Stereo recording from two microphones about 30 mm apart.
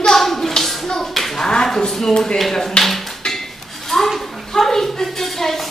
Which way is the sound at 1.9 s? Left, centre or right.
Centre.